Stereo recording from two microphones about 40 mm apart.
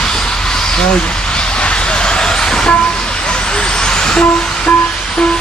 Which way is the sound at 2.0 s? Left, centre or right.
Left.